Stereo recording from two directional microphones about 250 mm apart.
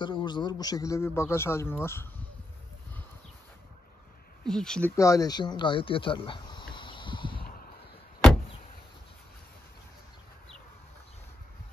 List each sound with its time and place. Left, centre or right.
0.0 s a man's voice: centre
4.5 s speech: centre
7.3 s a sound: left